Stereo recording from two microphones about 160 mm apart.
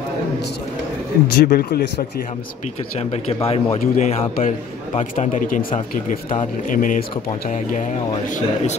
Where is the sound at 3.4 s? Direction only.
40° left (ahead or behind); by 7.0 s 55° left (ahead or behind).